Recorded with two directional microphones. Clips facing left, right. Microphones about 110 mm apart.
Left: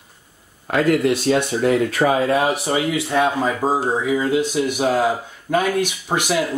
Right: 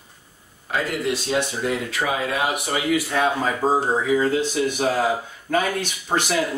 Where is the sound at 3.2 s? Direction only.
5° left (ahead or behind).